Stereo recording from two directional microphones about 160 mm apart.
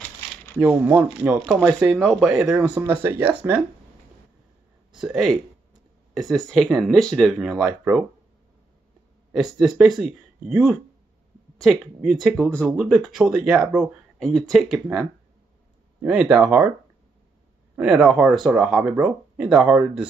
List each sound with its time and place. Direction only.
0.6 s speech: 10° right (ahead or behind)
1.7 s speech: 20° right (ahead or behind)
2.0 s speech: centre (ahead or behind)
4.9 s speech: centre (ahead or behind)
9.3 s speech: 5° right (ahead or behind)
17.7 s speech: 5° right (ahead or behind)